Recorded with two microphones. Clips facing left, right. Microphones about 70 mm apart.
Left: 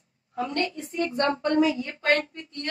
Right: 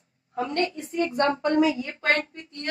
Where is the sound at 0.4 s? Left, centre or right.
Right.